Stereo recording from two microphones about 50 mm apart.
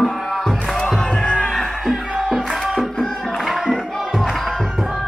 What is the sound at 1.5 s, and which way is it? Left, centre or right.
Music, centre.